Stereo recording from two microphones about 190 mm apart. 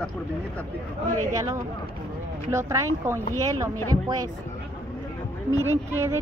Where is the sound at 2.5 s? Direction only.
15° right (ahead or behind).